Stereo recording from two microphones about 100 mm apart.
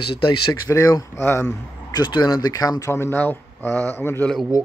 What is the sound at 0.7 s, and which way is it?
Speech, 35° left (ahead or behind).